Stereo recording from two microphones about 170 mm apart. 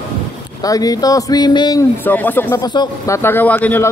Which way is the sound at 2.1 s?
10° left (ahead or behind).